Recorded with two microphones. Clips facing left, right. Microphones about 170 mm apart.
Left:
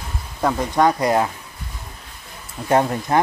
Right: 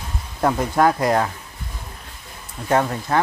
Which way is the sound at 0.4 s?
5° right (ahead or behind).